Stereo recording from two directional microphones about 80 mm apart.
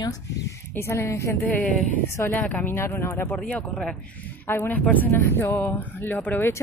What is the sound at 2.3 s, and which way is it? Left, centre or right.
Speech, left.